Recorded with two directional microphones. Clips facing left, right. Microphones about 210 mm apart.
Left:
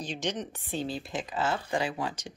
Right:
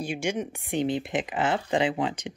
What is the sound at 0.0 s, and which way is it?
Speech, 10° right (ahead or behind).